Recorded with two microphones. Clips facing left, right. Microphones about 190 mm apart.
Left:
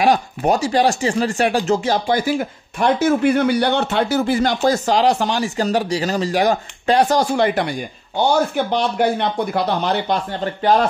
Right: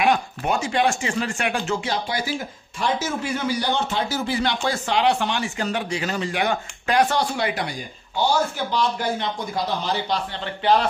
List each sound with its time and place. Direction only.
0.0 s speech: 35° left (ahead or behind)
2.8 s speech: 60° left (ahead or behind)
4.4 s speech: 45° left (ahead or behind)
8.2 s speech: 60° left (ahead or behind); by 10.9 s 45° left (ahead or behind)